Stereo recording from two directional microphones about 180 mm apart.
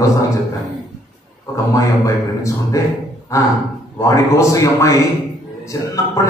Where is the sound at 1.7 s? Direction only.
15° left (ahead or behind).